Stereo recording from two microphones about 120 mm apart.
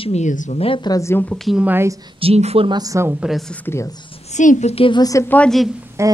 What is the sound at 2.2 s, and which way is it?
Speech, 60° right (ahead or behind).